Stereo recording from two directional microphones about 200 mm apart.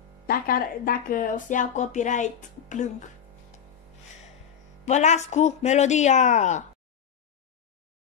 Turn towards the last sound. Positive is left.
turn(degrees=35)  # may be behind; listen again after turning